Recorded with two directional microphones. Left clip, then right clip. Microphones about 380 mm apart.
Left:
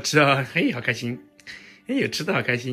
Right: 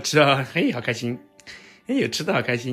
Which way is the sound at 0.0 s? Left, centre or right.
Centre.